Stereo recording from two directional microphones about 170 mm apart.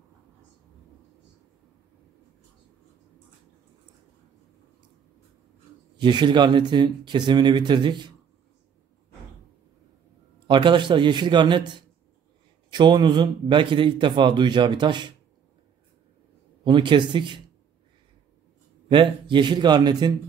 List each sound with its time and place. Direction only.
5.9 s a man's voice: 25° right (ahead or behind)
10.4 s a man's voice: 30° right (ahead or behind)
12.7 s a man's voice: 25° right (ahead or behind)
16.6 s a man's voice: 30° right (ahead or behind)
18.9 s a man's voice: 30° right (ahead or behind)